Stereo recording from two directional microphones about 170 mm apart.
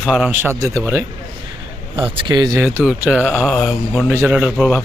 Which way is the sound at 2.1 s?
25° right (ahead or behind).